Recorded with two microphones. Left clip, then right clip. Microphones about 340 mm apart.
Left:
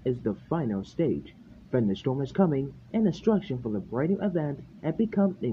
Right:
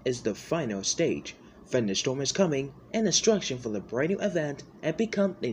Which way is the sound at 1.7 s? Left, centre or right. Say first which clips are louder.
Right 1 dB; left.